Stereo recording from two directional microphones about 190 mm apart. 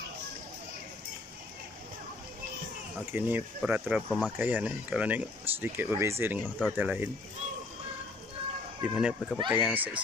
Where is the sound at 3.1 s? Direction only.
10° right (ahead or behind).